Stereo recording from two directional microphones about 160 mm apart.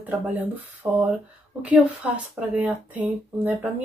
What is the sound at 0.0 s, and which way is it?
Speech, 10° right (ahead or behind).